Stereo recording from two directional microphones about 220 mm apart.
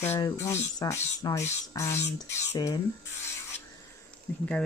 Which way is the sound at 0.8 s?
15° left (ahead or behind).